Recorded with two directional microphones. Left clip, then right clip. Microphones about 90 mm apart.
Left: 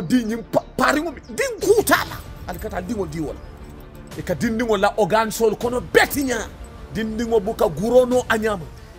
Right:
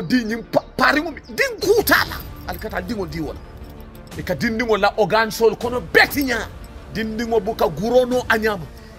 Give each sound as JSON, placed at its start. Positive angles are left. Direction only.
{"t": 0.1, "sound": "speech", "side_deg": 40}
{"t": 3.1, "sound": "speech", "side_deg": 40}
{"t": 4.2, "sound": "music", "side_deg": 45}
{"t": 6.1, "sound": "music", "side_deg": 35}
{"t": 7.9, "sound": "speech", "side_deg": 40}